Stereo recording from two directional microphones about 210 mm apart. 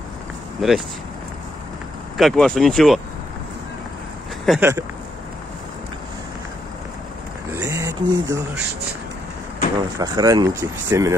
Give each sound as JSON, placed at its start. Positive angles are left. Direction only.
{"t": 0.6, "sound": "speech", "side_deg": 0}
{"t": 2.1, "sound": "speech", "side_deg": 0}
{"t": 4.5, "sound": "speech", "side_deg": -10}
{"t": 7.5, "sound": "speech", "side_deg": -15}
{"t": 9.9, "sound": "speech", "side_deg": -15}